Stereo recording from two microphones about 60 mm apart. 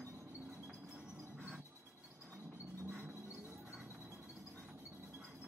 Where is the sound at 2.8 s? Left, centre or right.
Right.